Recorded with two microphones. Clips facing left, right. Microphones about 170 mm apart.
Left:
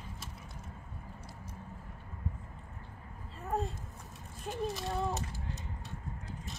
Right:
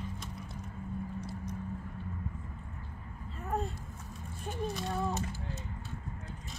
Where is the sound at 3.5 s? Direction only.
Centre (ahead or behind).